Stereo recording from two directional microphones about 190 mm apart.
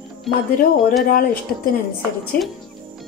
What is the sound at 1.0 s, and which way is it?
Speech, 50° left (ahead or behind).